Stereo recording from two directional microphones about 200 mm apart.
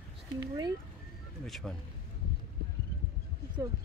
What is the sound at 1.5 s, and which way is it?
Speech, centre (ahead or behind).